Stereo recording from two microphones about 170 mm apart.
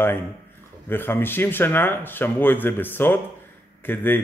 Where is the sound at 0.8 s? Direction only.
15° left (ahead or behind).